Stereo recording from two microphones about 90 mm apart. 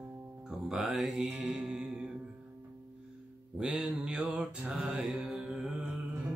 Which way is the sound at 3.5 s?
10° right (ahead or behind).